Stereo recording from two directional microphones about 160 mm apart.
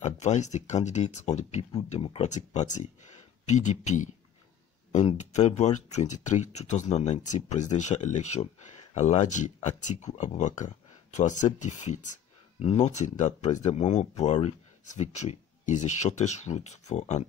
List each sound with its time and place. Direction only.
0.0 s speech: 45° left (ahead or behind)